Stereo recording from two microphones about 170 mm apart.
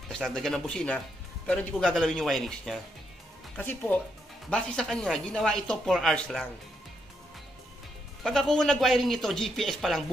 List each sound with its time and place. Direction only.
0.3 s speech: 5° left (ahead or behind)
8.2 s speech: centre (ahead or behind)